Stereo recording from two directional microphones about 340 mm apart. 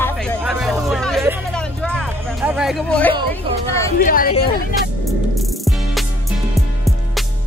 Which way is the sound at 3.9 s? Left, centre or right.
Left.